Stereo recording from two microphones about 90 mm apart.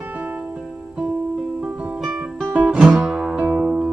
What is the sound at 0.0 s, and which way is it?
Music, 20° right (ahead or behind).